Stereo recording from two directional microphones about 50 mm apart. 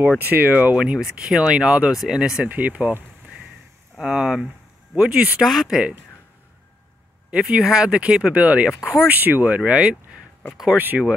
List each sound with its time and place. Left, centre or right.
0.2 s speech: right
0.7 s speech: centre
2.4 s speech: right
4.0 s speech: centre
5.4 s speech: centre
7.2 s speech: centre
8.4 s speech: right
9.7 s speech: centre
10.8 s speech: right